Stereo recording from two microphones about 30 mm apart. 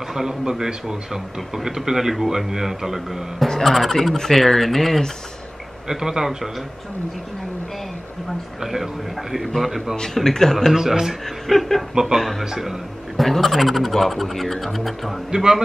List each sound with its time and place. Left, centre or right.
0.1 s a man's voice: centre
3.6 s speech: centre
5.9 s a man's voice: centre
9.6 s speech: centre
10.1 s speech: centre
10.7 s a man's voice: centre
11.4 s speech: centre
11.9 s a man's voice: centre
12.2 s speech: centre
15.3 s a man's voice: centre